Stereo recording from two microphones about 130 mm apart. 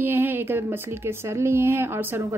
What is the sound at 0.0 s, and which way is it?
A woman's voice, 15° right (ahead or behind).